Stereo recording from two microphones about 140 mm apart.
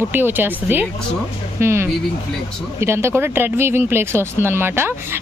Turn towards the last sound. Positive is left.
turn(degrees=-15)  # may be behind; listen again after turning